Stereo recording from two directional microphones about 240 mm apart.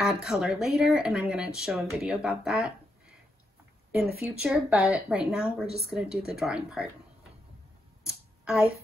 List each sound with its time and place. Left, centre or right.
0.0 s speech: centre
4.4 s speech: centre
8.1 s a sound: centre